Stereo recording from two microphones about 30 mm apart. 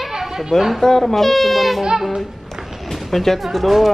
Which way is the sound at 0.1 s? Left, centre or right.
Centre.